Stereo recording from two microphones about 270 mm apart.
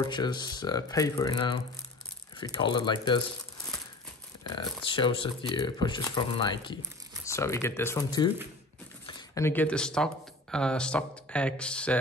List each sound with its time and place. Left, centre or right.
0.0 s speech: centre
4.8 s speech: centre